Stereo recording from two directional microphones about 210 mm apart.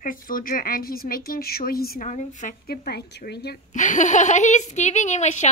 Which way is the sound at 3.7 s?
35° left (ahead or behind).